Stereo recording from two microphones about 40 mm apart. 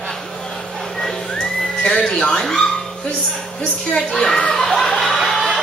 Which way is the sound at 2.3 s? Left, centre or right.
Centre.